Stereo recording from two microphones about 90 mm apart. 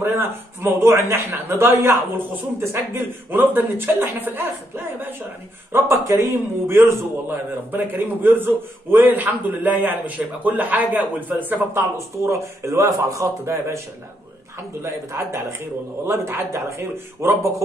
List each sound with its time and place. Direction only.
0.0 s a man's voice: 25° right (ahead or behind)
7.2 s a man's voice: 20° right (ahead or behind)
14.8 s a man's voice: 30° right (ahead or behind)